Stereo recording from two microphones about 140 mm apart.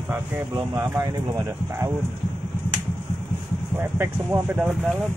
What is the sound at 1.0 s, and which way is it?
Speech, 30° right (ahead or behind).